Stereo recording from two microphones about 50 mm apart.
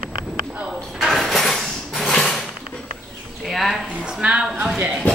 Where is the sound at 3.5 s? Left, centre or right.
Centre.